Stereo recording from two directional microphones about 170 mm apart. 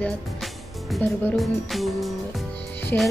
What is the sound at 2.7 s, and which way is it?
Music, centre (ahead or behind).